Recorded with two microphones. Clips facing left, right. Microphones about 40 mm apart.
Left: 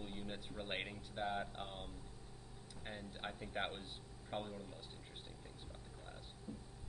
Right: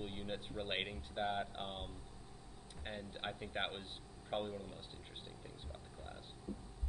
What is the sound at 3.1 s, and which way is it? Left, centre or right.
Speech, right.